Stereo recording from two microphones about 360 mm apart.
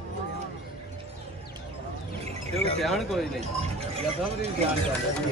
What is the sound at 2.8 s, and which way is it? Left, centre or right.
Speech, centre.